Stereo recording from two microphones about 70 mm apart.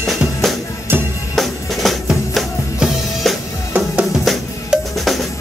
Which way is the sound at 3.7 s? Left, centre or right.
Centre.